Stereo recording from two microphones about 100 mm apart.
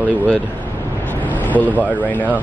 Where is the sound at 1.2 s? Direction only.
15° left (ahead or behind).